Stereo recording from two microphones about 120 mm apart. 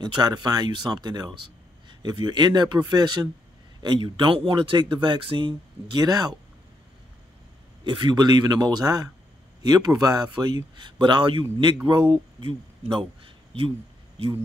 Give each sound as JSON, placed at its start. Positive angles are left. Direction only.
{"t": 0.0, "sound": "speech", "side_deg": -35}
{"t": 7.8, "sound": "speech", "side_deg": -40}